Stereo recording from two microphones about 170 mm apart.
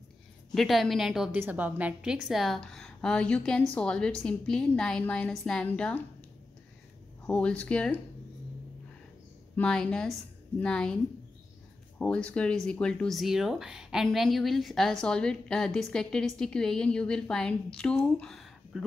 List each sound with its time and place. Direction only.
0.6 s speech: centre (ahead or behind)
7.2 s speech: 5° left (ahead or behind)
9.6 s speech: 5° left (ahead or behind)
12.0 s speech: 5° left (ahead or behind)